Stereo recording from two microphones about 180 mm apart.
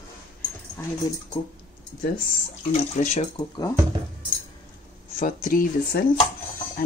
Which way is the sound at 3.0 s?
40° left (ahead or behind).